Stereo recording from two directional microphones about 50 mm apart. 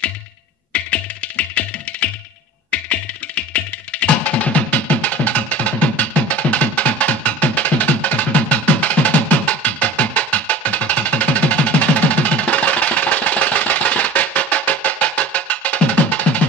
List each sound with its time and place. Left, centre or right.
0.7 s music: left